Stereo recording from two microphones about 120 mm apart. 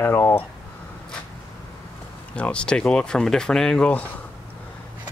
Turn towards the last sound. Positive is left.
turn(degrees=10)  # may be behind; listen again after turning